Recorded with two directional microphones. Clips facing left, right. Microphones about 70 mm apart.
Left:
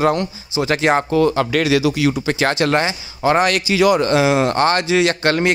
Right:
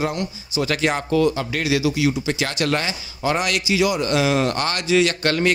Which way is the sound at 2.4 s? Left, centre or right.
Left.